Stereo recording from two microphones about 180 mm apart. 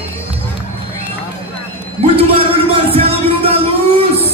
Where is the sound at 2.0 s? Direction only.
30° right (ahead or behind).